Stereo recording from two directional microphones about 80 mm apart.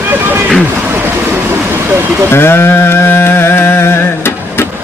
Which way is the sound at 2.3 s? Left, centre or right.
Left.